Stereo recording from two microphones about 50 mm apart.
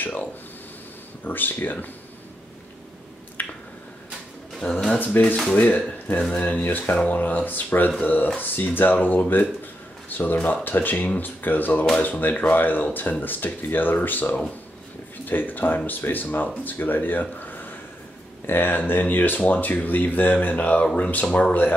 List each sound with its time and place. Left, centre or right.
0.0 s a sound: left
1.2 s speech: left
3.4 s finger snapping: left
4.6 s speech: centre
4.9 s speech: left